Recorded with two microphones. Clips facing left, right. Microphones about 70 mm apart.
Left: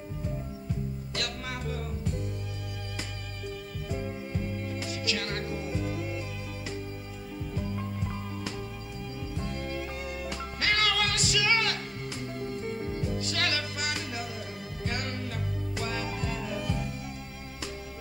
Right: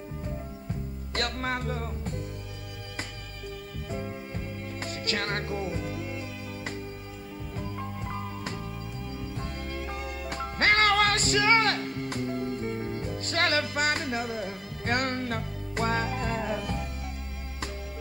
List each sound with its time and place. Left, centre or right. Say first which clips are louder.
1.1 s music: right 8 dB; right
4.7 s music: right 3 dB; right
10.3 s music: right 6 dB; right